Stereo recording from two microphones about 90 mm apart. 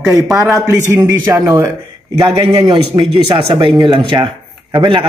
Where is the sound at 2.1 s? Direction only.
65° right (ahead or behind).